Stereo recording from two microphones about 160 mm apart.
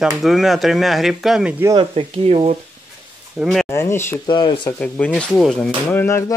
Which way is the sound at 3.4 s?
Centre (ahead or behind).